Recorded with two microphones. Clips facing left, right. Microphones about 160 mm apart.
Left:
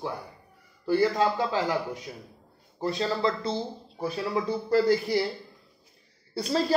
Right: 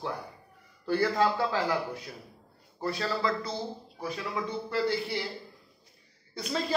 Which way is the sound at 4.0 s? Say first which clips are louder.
Left 5 dB; 35° left (ahead or behind).